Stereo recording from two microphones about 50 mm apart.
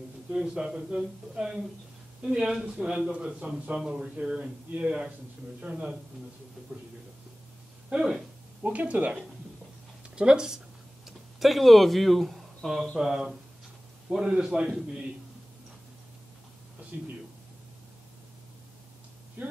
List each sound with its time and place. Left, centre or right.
0.3 s speech: centre
3.1 s a man's voice: right
7.9 s speech: centre
8.6 s a man's voice: right
10.1 s speech: centre
11.1 s speech: centre
16.9 s speech: right
19.4 s a sound: right